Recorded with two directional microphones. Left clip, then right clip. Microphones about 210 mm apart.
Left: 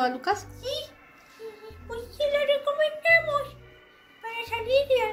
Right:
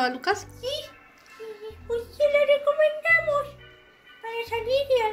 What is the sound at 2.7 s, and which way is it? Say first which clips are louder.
Child singing: right 1 dB; 20° right (ahead or behind).